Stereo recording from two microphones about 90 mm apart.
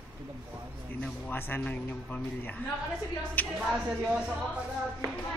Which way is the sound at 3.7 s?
10° right (ahead or behind).